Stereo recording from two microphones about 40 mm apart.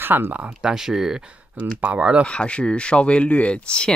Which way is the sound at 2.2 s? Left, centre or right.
Left.